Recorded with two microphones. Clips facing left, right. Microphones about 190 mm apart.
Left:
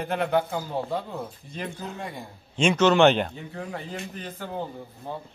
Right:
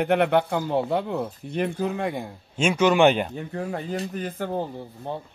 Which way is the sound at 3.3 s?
45° right (ahead or behind).